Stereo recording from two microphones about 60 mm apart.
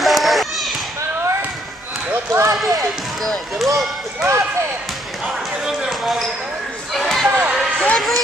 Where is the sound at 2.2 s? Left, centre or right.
Right.